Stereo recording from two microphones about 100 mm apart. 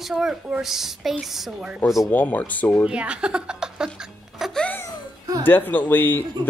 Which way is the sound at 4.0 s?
Centre (ahead or behind).